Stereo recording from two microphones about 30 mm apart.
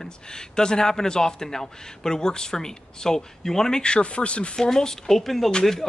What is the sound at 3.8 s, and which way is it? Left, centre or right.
Speech, left.